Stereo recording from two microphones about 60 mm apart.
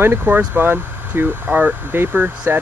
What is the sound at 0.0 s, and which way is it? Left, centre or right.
Speech, right.